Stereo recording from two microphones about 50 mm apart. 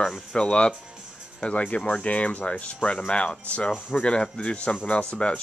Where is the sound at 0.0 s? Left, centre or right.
Centre.